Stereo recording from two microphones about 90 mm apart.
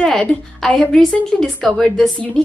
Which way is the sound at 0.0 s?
10° left (ahead or behind).